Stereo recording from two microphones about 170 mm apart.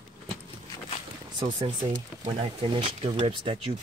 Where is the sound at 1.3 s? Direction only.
25° right (ahead or behind).